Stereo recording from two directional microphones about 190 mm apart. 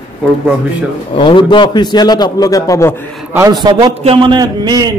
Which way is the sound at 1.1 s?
25° left (ahead or behind).